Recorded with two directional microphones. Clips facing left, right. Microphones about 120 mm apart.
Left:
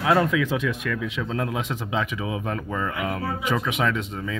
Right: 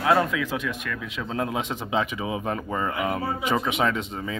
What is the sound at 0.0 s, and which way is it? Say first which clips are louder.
Speech: left 1 dB; 5° left (ahead or behind).